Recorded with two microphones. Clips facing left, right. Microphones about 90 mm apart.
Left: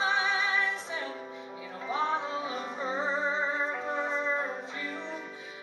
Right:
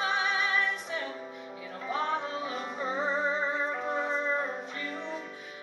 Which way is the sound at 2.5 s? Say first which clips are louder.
Even; 5° right (ahead or behind).